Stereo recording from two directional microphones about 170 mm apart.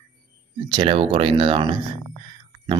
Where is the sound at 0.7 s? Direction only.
30° right (ahead or behind).